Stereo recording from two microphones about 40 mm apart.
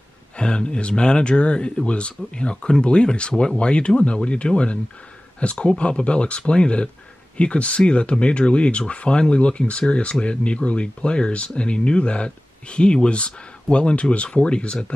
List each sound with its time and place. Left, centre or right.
0.4 s speech: left